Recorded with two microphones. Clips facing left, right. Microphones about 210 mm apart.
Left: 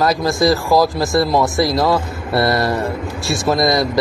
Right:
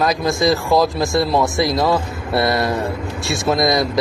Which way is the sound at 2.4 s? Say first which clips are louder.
Left 2 dB; 20° right (ahead or behind).